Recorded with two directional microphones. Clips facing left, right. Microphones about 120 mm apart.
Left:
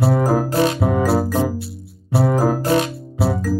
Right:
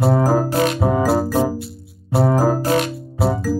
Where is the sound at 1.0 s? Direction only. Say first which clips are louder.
Right 1 dB; centre (ahead or behind).